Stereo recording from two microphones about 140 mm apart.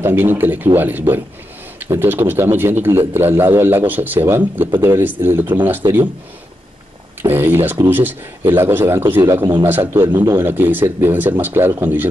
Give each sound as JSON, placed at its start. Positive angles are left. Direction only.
{"t": 0.0, "sound": "speech", "side_deg": -15}
{"t": 7.2, "sound": "speech", "side_deg": -15}